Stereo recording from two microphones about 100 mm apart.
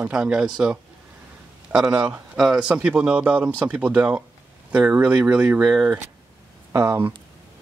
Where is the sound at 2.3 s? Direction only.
Centre (ahead or behind).